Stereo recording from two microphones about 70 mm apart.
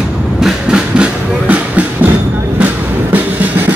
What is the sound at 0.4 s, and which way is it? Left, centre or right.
Vehicle, centre.